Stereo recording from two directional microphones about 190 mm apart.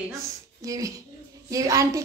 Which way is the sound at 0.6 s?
15° right (ahead or behind).